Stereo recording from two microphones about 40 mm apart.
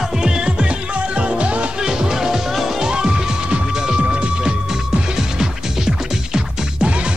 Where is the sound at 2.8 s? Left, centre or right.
Centre.